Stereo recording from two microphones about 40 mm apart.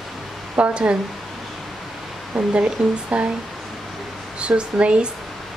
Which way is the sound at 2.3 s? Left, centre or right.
Right.